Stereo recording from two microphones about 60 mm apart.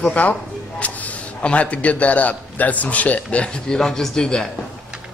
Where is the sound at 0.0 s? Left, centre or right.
Left.